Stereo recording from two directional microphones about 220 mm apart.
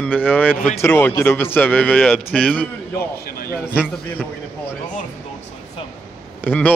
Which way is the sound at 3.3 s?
45° left (ahead or behind).